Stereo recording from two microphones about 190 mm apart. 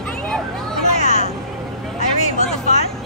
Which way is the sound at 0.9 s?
35° left (ahead or behind).